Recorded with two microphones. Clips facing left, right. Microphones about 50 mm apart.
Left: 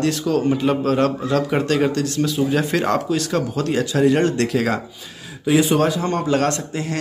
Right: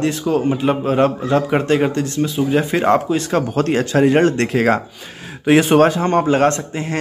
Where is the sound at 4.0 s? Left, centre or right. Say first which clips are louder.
Right 2 dB; right.